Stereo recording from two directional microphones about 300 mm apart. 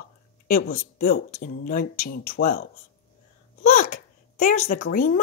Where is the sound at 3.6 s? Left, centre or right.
Left.